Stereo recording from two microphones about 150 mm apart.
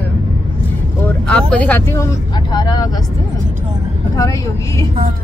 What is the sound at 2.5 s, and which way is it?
Speech, 30° left (ahead or behind).